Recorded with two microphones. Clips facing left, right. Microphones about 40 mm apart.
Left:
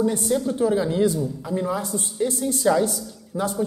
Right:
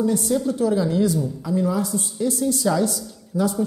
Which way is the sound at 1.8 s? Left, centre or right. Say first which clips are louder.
Right 3 dB; left.